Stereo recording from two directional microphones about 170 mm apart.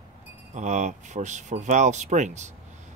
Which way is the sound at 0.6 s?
45° right (ahead or behind).